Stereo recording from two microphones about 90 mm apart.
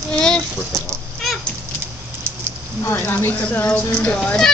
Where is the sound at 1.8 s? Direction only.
25° right (ahead or behind).